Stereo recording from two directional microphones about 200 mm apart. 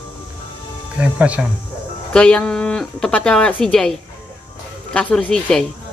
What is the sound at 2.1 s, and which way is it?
Speech, 5° left (ahead or behind).